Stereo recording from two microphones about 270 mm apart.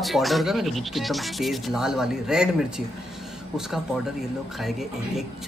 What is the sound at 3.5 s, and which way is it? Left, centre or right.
Speech, centre.